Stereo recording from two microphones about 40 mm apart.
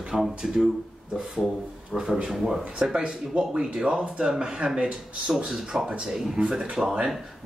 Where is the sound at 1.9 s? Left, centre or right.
Centre.